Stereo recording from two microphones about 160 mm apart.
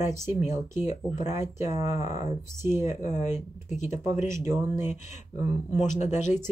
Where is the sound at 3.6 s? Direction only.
45° left (ahead or behind).